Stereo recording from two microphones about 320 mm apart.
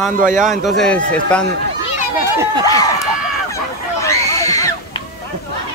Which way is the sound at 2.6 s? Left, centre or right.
Centre.